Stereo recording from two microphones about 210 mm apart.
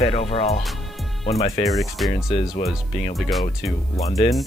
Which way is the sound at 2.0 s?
Centre (ahead or behind).